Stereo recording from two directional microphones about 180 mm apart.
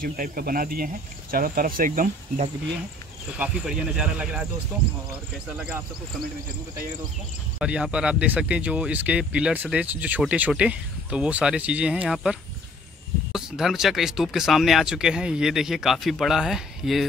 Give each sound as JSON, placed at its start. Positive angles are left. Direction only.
{"t": 0.0, "sound": "speech", "side_deg": -50}
{"t": 3.3, "sound": "speech", "side_deg": -5}
{"t": 7.5, "sound": "speech", "side_deg": -5}